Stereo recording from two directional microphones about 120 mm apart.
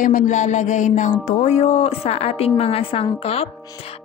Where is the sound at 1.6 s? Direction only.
60° left (ahead or behind).